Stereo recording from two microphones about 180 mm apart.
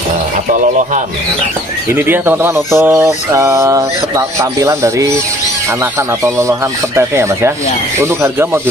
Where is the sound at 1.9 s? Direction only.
10° right (ahead or behind).